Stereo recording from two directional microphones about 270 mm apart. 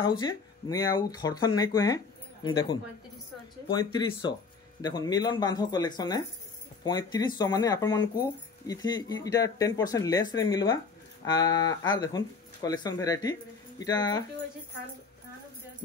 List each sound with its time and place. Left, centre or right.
0.0 s speech: centre